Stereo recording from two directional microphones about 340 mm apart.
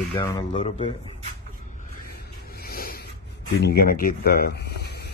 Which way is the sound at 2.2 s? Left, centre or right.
Left.